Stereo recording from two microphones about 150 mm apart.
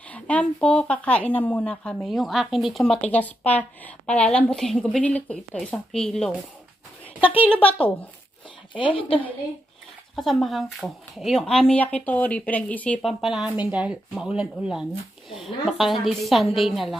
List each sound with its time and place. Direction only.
0.1 s a woman's voice: 10° left (ahead or behind)
7.4 s a woman's voice: 10° left (ahead or behind)
8.7 s a woman's voice: 35° left (ahead or behind)
10.1 s a woman's voice: centre (ahead or behind)
13.2 s speech: 5° right (ahead or behind)